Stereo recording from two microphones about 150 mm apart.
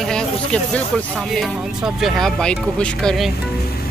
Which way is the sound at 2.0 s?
Centre (ahead or behind).